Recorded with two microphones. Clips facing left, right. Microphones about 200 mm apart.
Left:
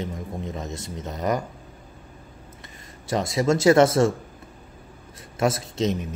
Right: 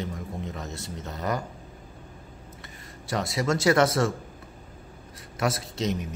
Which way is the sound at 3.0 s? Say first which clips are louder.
Left 5 dB; 20° left (ahead or behind).